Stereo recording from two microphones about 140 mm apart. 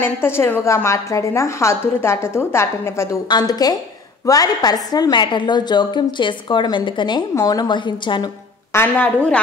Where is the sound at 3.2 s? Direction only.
30° left (ahead or behind).